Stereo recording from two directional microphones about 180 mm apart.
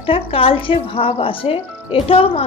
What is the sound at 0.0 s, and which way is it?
Speech, 30° left (ahead or behind).